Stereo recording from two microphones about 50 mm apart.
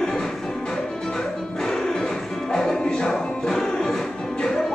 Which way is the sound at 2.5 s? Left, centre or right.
Centre.